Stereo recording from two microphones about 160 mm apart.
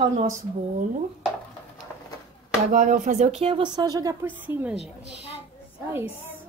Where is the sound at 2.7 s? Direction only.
55° right (ahead or behind); by 4.3 s 20° right (ahead or behind).